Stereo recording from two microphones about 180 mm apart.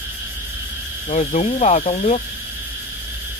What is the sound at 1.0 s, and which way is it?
Speech, 40° left (ahead or behind).